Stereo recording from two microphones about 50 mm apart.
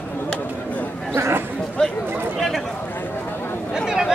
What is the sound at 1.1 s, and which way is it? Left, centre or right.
Chatter, right.